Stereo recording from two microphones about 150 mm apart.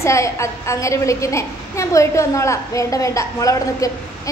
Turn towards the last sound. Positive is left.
turn(degrees=20)  # may be behind; listen again after turning